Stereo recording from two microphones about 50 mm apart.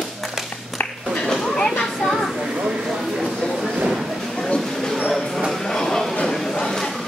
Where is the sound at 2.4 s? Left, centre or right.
Centre.